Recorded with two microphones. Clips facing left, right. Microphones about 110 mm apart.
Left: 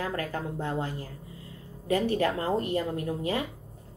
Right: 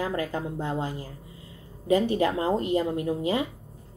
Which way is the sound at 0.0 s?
15° right (ahead or behind).